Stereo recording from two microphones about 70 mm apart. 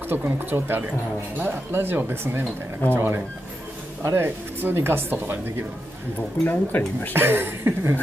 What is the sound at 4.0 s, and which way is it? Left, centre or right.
Speech, right.